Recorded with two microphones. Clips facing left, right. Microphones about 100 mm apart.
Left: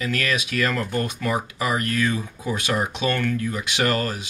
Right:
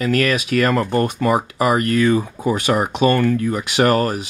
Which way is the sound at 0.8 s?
35° right (ahead or behind).